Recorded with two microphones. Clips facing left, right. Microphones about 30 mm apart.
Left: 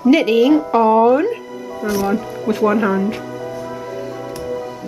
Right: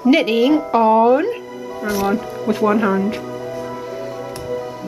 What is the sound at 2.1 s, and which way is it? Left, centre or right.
Speech, centre.